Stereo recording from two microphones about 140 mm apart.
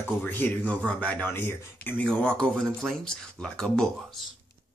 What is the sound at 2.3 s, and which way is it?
Speech, 5° left (ahead or behind).